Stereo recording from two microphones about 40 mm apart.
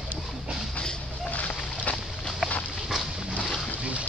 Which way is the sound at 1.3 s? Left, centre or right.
Left.